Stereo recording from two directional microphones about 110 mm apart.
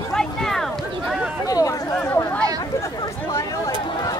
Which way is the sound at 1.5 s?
30° left (ahead or behind).